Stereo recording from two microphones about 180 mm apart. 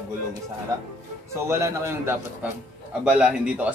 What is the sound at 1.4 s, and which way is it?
Speech, 15° right (ahead or behind).